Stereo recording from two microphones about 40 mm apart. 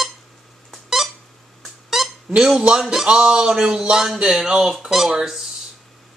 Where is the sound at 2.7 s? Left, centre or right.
Centre.